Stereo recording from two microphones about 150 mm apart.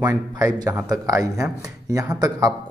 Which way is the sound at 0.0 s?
25° right (ahead or behind).